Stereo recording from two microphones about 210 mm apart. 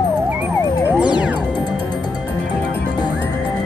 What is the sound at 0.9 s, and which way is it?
Music, 5° right (ahead or behind).